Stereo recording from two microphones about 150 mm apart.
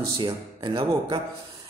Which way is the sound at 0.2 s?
30° right (ahead or behind).